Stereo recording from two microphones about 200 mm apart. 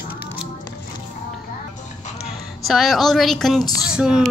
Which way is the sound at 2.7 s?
Centre (ahead or behind).